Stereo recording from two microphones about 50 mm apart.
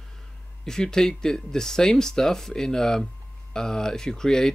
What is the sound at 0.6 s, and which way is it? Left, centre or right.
Speech, centre.